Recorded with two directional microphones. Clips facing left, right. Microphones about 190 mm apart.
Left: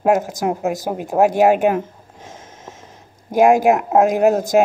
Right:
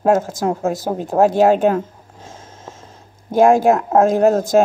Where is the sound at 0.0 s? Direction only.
15° left (ahead or behind).